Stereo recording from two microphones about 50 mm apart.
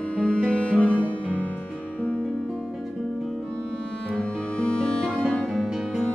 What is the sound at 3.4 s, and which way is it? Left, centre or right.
Music, centre.